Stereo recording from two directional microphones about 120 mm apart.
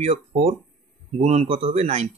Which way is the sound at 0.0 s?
65° right (ahead or behind).